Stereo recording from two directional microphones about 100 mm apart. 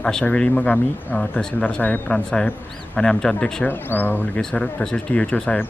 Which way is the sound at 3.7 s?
20° left (ahead or behind).